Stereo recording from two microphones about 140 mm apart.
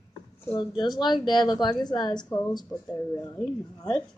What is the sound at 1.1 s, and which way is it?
Speech, centre (ahead or behind).